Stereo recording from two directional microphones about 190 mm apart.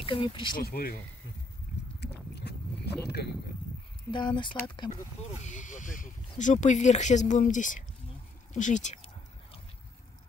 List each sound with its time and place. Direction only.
0.0 s speech: 30° left (ahead or behind)
0.6 s speech: 50° left (ahead or behind)
2.0 s biting: 60° left (ahead or behind)
4.1 s speech: 25° left (ahead or behind)
5.4 s speech: 40° left (ahead or behind)
8.5 s a sound: 40° left (ahead or behind)